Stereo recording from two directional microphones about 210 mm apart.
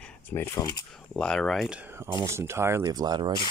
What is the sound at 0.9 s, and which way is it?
Speech, 5° left (ahead or behind).